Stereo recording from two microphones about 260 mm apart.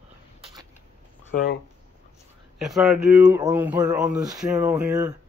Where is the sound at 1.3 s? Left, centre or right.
Left.